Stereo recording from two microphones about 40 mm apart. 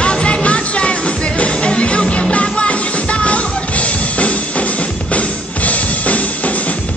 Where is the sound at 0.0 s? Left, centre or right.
Left.